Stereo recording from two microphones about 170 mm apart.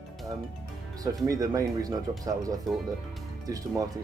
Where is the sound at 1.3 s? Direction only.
20° right (ahead or behind).